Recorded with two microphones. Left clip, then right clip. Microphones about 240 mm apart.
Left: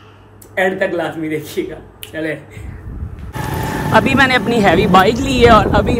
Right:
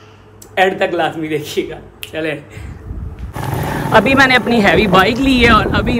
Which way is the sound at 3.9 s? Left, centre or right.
Centre.